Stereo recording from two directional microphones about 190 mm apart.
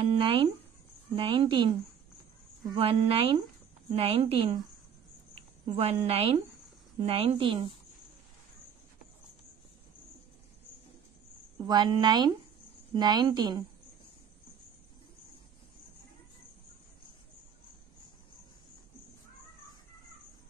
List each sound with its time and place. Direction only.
0.0 s a sound: 30° right (ahead or behind)
1.1 s a woman's voice: 25° right (ahead or behind)
5.8 s a woman's voice: 35° right (ahead or behind)
11.5 s a woman's voice: 20° right (ahead or behind)